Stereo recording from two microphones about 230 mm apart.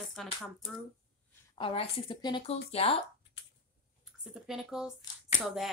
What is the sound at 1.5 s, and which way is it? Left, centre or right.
A woman's voice, left.